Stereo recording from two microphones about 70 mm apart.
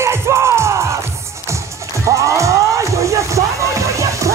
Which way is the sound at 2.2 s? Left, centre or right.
Right.